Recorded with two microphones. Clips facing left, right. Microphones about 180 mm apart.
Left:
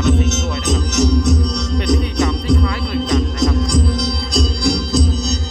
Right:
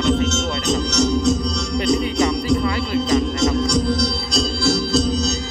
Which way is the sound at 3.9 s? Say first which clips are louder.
Left 1 dB; 20° left (ahead or behind).